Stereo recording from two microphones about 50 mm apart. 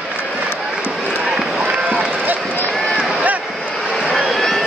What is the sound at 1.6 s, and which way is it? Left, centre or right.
Run, centre.